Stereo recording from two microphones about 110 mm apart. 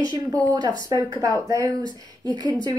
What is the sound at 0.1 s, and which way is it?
A woman's voice, 40° right (ahead or behind).